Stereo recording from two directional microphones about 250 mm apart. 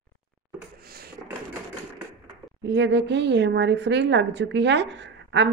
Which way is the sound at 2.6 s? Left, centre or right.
Right.